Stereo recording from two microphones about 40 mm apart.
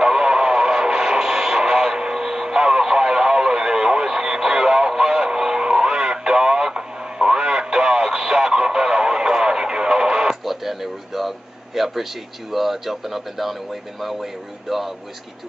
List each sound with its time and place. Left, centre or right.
0.0 s radio: centre
14.0 s speech: centre